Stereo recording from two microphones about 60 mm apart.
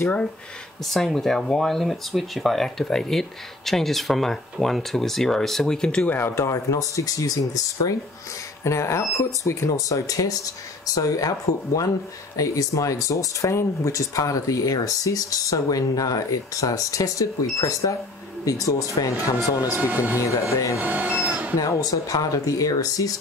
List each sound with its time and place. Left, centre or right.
0.8 s speech: centre
6.0 s speech: left
8.6 s speech: left
19.7 s speech: right
20.5 s speech: left
20.8 s speech: right
21.2 s a sound: right
21.5 s speech: left